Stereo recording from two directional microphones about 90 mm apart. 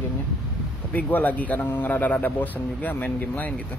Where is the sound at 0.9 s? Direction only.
15° left (ahead or behind).